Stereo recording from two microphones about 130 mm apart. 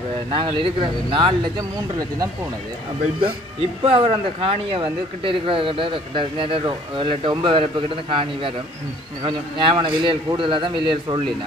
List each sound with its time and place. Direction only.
0.3 s speech: 40° right (ahead or behind)
3.8 s speech: 45° right (ahead or behind)